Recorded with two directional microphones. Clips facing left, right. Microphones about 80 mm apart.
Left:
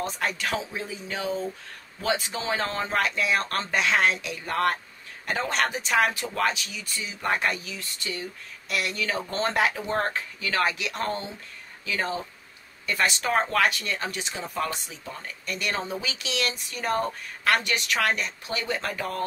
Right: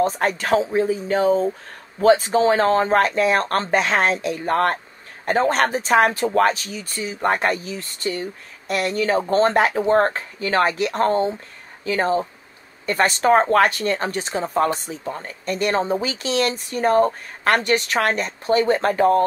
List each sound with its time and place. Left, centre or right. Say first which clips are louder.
0.0 s speech: right 9 dB; right